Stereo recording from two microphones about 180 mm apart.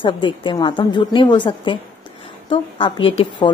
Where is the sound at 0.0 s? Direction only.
25° left (ahead or behind).